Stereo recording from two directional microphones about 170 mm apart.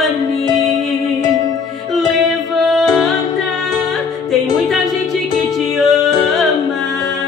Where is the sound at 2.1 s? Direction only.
Centre (ahead or behind).